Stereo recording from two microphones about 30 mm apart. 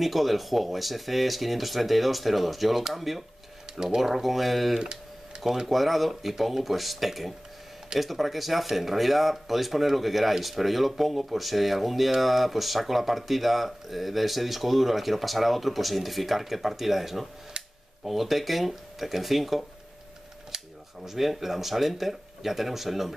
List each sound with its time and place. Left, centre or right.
0.0 s speech: centre
3.7 s speech: centre
4.0 s speech: centre
20.5 s camera: right
21.0 s speech: centre